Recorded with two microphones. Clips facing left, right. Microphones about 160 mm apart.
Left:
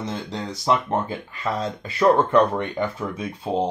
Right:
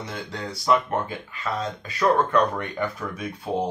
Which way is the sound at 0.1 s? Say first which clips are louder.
Left 3 dB; 25° left (ahead or behind).